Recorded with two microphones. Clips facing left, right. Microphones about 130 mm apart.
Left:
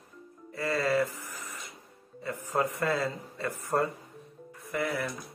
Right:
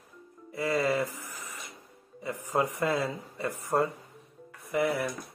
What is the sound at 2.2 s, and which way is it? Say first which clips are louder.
Speech: right 1 dB; 15° right (ahead or behind).